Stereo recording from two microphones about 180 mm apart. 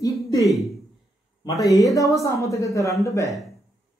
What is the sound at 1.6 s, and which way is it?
A woman's voice, 20° left (ahead or behind).